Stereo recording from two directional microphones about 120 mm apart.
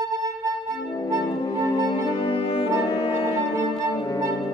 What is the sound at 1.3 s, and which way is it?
Music, 30° left (ahead or behind).